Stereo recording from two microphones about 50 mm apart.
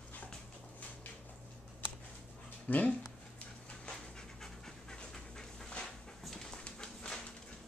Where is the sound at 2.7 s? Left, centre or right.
Left.